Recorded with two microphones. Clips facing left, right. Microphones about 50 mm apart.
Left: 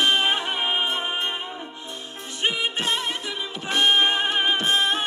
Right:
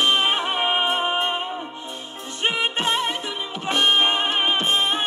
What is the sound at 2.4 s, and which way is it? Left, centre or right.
Music, right.